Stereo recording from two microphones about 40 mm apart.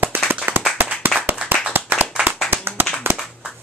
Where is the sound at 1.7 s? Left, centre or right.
Right.